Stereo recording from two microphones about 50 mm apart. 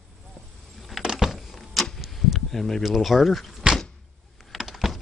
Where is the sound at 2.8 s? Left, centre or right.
Centre.